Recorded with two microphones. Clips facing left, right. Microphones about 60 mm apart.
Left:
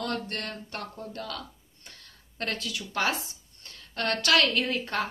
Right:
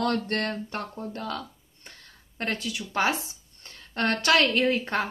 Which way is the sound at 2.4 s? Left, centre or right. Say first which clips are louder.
Right 2 dB; right.